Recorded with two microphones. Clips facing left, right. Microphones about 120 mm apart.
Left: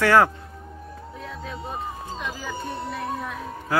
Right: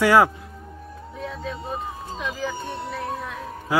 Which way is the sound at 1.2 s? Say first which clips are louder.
Right 4 dB; centre (ahead or behind).